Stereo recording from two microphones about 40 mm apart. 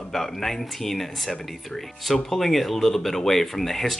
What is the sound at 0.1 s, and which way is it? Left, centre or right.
Speech, centre.